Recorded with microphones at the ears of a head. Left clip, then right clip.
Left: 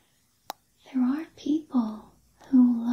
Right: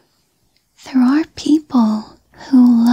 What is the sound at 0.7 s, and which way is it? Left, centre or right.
Whispering, right.